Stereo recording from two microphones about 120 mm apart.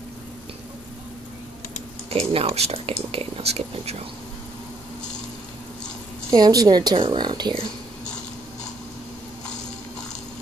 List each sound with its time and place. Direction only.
2.0 s speech: 55° right (ahead or behind)
6.3 s a woman's voice: 35° right (ahead or behind)